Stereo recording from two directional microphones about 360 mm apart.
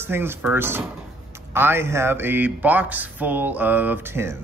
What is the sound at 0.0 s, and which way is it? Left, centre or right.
Speech, centre.